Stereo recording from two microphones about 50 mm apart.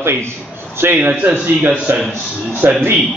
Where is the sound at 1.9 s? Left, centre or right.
Right.